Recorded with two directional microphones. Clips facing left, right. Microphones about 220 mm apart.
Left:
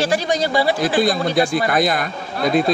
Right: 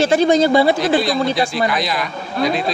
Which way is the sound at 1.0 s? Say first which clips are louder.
Even; 50° left (ahead or behind).